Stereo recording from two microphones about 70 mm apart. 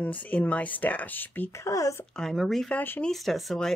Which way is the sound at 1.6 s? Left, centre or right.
Left.